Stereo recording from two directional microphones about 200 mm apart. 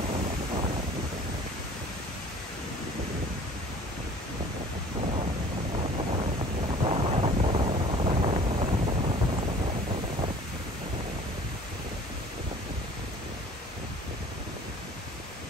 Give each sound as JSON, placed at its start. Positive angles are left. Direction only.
{"t": 5.8, "sound": "wind noise", "side_deg": -30}